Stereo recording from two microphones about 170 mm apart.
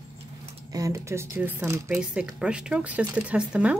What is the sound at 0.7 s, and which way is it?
Speech, 20° right (ahead or behind).